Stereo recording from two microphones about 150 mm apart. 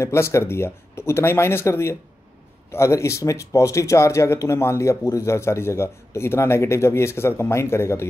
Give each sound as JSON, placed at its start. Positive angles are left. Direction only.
{"t": 0.0, "sound": "speech", "side_deg": 15}